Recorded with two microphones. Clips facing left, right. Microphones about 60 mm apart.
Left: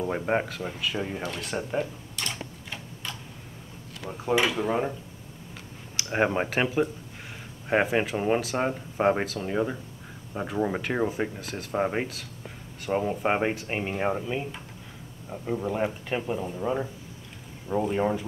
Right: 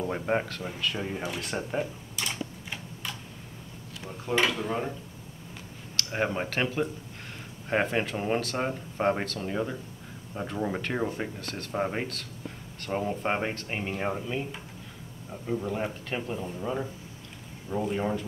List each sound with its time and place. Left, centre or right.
0.0 s speech: centre
1.2 s typewriter: centre
4.1 s speech: centre
5.9 s speech: left